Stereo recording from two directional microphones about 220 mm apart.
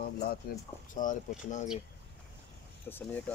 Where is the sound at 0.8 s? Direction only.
35° left (ahead or behind).